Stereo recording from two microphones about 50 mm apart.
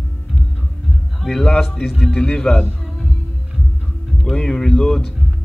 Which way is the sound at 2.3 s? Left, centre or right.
Left.